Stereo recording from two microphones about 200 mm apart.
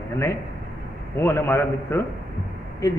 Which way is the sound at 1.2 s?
10° left (ahead or behind).